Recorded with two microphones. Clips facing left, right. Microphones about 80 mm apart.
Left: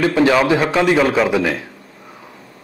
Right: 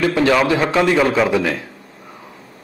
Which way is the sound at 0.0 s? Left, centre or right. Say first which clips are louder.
Left 1 dB; left.